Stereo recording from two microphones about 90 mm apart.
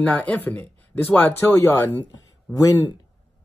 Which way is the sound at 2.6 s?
40° left (ahead or behind).